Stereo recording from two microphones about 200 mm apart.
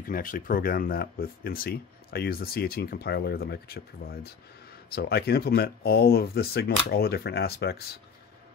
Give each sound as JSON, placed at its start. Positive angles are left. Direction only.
{"t": 0.0, "sound": "speech", "side_deg": 45}